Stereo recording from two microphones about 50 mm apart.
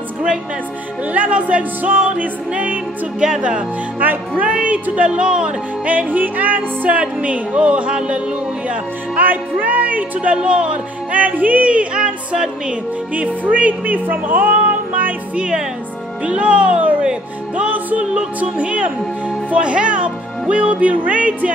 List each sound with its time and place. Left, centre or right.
1.1 s speech: right
3.2 s speech: centre
4.0 s speech: right
4.5 s speech: right
5.9 s speech: right
10.3 s speech: right
15.3 s speech: right
17.0 s music: centre
17.6 s speech: right